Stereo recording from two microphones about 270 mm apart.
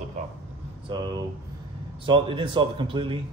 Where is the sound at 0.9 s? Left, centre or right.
Centre.